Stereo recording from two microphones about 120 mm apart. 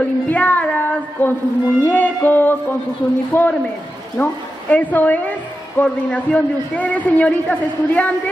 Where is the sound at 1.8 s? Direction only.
15° left (ahead or behind).